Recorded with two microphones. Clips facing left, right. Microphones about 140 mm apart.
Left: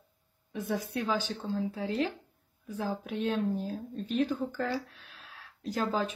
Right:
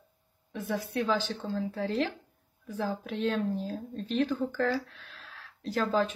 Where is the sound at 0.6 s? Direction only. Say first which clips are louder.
Right 1 dB; 15° left (ahead or behind).